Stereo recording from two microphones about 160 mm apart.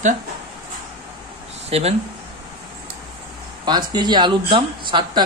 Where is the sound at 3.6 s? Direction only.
25° right (ahead or behind).